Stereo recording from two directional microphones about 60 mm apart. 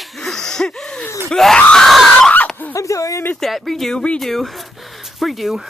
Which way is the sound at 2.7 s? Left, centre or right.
Left.